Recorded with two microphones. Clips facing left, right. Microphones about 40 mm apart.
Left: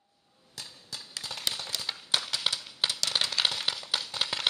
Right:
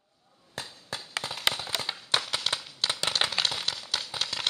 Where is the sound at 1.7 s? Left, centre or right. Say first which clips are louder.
Right 4 dB; right.